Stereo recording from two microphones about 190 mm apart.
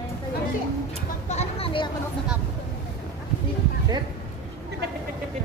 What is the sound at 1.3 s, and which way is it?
Speech, 35° left (ahead or behind).